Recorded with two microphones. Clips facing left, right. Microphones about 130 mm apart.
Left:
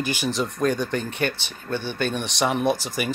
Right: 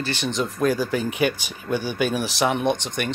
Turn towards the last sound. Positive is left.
turn(degrees=5)  # may be behind; listen again after turning